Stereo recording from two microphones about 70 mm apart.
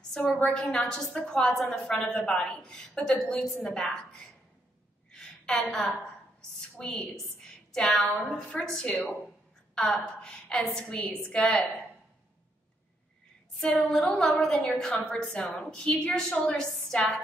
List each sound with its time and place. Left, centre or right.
0.4 s a woman's voice: centre
5.1 s a sound: centre
6.8 s a woman's voice: centre
7.2 s a sound: centre
8.3 s a woman's voice: centre
11.0 s a woman's voice: centre
13.6 s a woman's voice: centre